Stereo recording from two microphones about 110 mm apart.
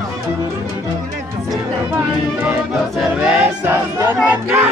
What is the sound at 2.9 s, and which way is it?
Choir, 5° right (ahead or behind).